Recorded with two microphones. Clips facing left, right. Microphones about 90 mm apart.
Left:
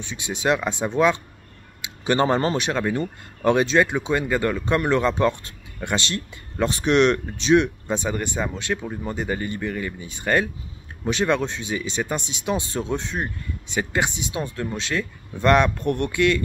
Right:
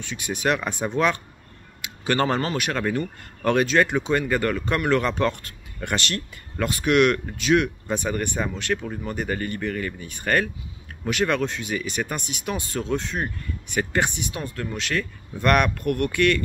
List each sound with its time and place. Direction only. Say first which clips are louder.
0.0 s speech: even; 20° left (ahead or behind)